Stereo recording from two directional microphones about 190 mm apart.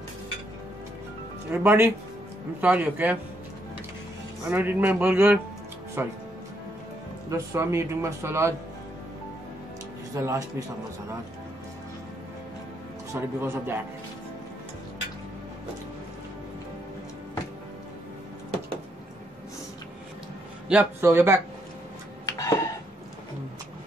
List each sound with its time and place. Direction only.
1.5 s speech: 10° right (ahead or behind)
4.5 s speech: 10° right (ahead or behind)
7.2 s speech: 15° right (ahead or behind)
10.1 s speech: 15° right (ahead or behind)
13.1 s speech: 10° right (ahead or behind)
20.6 s speech: 10° right (ahead or behind)
22.4 s a sound: 15° left (ahead or behind)